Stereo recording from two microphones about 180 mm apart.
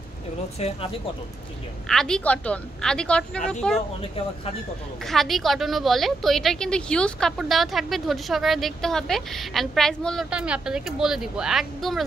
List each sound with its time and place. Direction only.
0.6 s speech: 35° left (ahead or behind)
1.9 s a woman's voice: 5° left (ahead or behind)
5.0 s a woman's voice: centre (ahead or behind)